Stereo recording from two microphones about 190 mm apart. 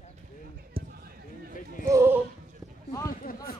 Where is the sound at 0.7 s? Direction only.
30° right (ahead or behind).